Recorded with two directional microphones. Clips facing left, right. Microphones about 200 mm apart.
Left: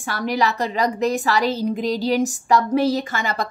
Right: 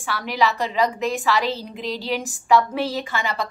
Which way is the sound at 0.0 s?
45° left (ahead or behind).